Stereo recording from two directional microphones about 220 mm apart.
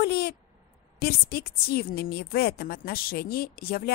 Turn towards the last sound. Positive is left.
turn(degrees=45)  # may be behind; listen again after turning